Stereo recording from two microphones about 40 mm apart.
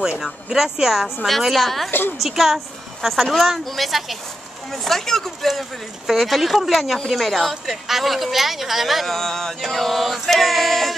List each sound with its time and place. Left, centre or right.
0.0 s speech: centre
1.4 s a woman's voice: centre
1.9 s a woman's voice: left
2.2 s a woman's voice: centre
9.1 s a woman's voice: centre